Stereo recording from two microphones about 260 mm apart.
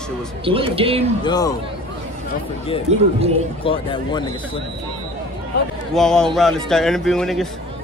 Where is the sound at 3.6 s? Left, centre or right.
Centre.